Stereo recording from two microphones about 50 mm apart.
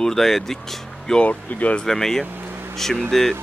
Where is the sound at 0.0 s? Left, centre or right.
Centre.